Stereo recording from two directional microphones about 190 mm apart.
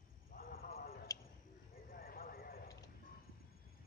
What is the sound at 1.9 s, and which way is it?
Clip-clop, 50° left (ahead or behind).